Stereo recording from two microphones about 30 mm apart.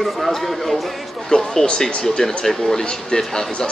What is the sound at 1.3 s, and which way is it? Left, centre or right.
Speech, centre.